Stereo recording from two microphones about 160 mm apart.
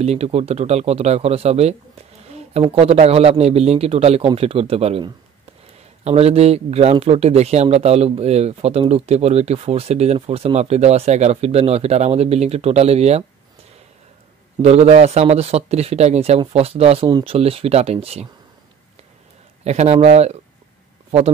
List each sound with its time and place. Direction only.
0.0 s speech: 40° right (ahead or behind)
6.0 s speech: 40° right (ahead or behind)
14.6 s speech: 45° right (ahead or behind)
19.6 s a man's voice: 45° right (ahead or behind)